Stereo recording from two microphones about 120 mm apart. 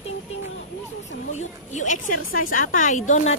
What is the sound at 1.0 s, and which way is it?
A woman's voice, 75° left (ahead or behind).